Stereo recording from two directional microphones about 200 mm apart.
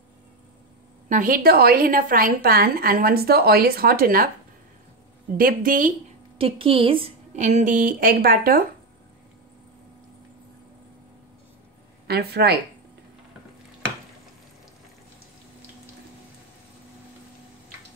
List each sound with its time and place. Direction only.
1.0 s a woman's voice: 40° right (ahead or behind)
5.4 s a woman's voice: 45° right (ahead or behind)
6.3 s a woman's voice: 25° right (ahead or behind); by 8.6 s 45° right (ahead or behind)
12.1 s a woman's voice: 50° right (ahead or behind)